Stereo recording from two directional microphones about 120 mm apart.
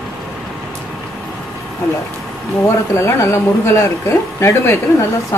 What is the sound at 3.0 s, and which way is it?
Speech, 25° left (ahead or behind).